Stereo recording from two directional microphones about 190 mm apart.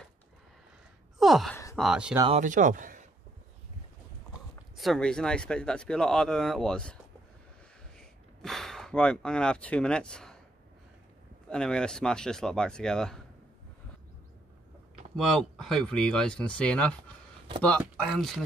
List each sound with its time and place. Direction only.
1.1 s gasp: centre (ahead or behind)
1.8 s speech: 5° right (ahead or behind)
2.3 s speech: 40° right (ahead or behind)
4.7 s speech: centre (ahead or behind)
8.0 s speech: centre (ahead or behind)
11.4 s speech: 5° left (ahead or behind)
15.1 s speech: centre (ahead or behind)